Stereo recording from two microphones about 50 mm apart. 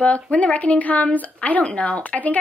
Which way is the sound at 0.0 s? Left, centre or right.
Left.